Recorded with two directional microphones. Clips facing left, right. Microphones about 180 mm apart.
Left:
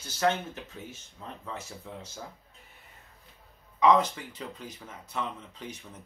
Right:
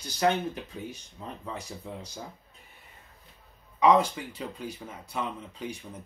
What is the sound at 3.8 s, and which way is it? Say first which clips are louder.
Speech: right 1 dB; 10° right (ahead or behind).